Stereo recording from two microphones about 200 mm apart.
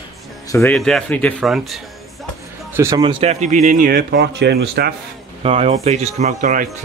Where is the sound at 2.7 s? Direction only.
15° right (ahead or behind).